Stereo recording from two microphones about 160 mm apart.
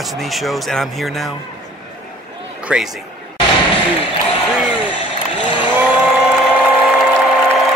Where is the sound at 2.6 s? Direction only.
5° right (ahead or behind).